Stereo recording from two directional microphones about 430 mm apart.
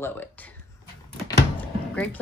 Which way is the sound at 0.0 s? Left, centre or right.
Centre.